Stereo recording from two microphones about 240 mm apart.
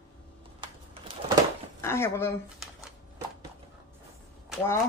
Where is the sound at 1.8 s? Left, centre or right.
Centre.